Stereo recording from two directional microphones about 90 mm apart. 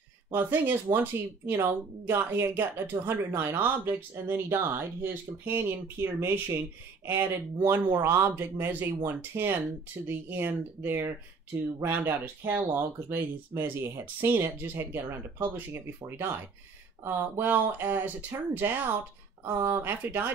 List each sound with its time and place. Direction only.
0.3 s a woman's voice: 20° right (ahead or behind)
7.6 s a woman's voice: 30° right (ahead or behind)